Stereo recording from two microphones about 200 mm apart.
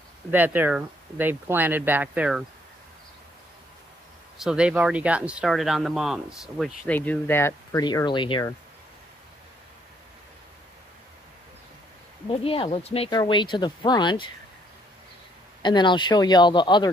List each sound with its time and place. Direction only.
0.3 s speech: 10° right (ahead or behind)
4.4 s speech: 5° right (ahead or behind); by 8.5 s 20° left (ahead or behind)
12.3 s speech: 25° left (ahead or behind)
15.6 s speech: 25° left (ahead or behind)